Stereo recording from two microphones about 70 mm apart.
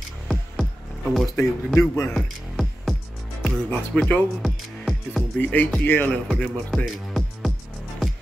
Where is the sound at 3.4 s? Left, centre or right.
Centre.